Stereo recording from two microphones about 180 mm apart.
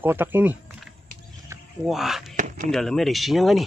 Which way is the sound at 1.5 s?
15° right (ahead or behind).